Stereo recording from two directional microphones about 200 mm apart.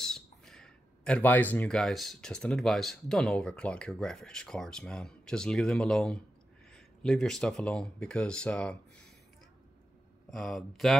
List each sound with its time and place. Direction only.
0.0 s speech: centre (ahead or behind)
10.3 s speech: centre (ahead or behind)